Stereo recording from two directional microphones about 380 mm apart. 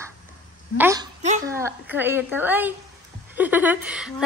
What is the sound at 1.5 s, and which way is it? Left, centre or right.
A woman's voice, centre.